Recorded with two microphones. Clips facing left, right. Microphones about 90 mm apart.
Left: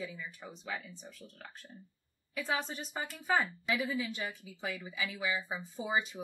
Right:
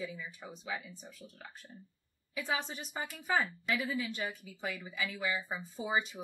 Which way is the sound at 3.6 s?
5° left (ahead or behind).